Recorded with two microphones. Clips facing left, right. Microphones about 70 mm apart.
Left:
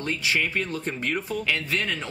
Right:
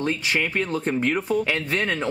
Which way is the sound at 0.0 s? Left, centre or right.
Right.